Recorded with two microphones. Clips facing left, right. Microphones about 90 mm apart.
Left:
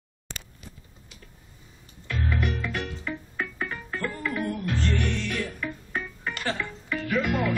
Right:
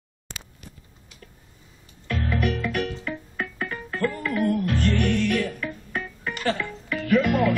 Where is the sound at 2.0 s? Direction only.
60° right (ahead or behind).